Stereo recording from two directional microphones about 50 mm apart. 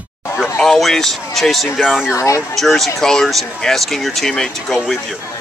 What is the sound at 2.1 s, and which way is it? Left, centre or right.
Speech, left.